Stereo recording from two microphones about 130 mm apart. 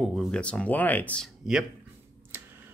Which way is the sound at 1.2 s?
5° right (ahead or behind).